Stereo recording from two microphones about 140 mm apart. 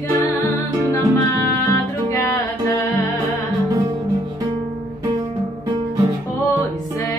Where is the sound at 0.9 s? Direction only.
20° left (ahead or behind).